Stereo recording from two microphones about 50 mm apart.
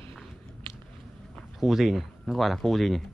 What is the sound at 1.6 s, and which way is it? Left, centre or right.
Speech, centre.